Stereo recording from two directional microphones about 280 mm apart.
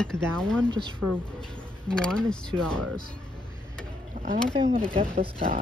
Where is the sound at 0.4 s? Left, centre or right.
Centre.